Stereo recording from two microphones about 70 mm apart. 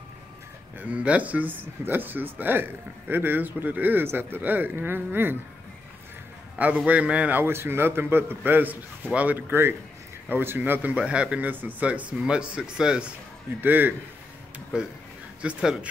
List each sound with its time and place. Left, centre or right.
0.7 s speech: right
6.6 s speech: centre
13.6 s speech: right
15.4 s speech: centre